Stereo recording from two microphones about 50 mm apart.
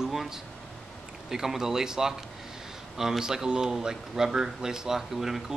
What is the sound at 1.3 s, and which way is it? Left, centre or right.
Speech, centre.